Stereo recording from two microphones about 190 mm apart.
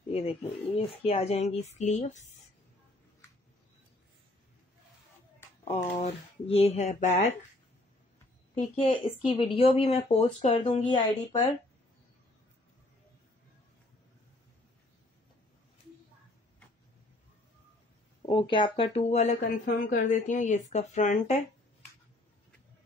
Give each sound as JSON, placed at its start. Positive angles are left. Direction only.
{"t": 0.1, "sound": "speech", "side_deg": 30}
{"t": 5.7, "sound": "speech", "side_deg": 35}
{"t": 8.7, "sound": "speech", "side_deg": 30}
{"t": 18.2, "sound": "speech", "side_deg": 25}